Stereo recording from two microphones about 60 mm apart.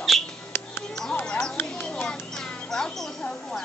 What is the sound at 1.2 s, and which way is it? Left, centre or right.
Speech, centre.